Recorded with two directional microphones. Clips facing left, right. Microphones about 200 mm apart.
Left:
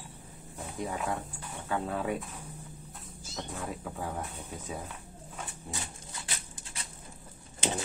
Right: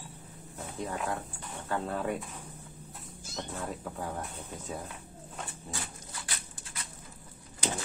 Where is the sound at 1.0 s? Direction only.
10° left (ahead or behind).